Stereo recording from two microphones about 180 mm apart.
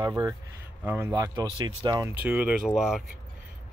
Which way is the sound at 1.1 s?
20° right (ahead or behind).